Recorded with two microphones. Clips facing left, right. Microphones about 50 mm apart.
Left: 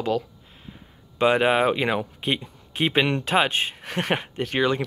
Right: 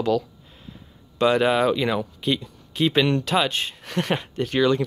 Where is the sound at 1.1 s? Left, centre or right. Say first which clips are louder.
Even; left.